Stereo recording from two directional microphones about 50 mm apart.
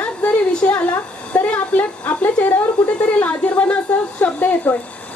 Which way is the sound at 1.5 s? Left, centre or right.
Left.